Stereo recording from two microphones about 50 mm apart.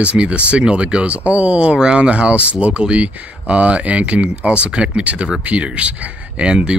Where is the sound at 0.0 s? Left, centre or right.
Right.